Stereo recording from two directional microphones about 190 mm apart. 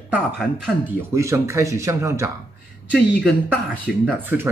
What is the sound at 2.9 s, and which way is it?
Speech, 5° left (ahead or behind).